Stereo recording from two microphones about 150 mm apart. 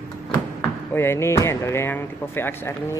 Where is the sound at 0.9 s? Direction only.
15° left (ahead or behind).